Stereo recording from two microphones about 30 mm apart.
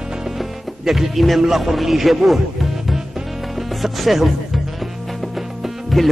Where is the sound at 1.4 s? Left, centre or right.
Centre.